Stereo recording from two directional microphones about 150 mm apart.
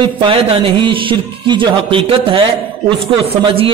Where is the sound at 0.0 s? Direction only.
35° right (ahead or behind).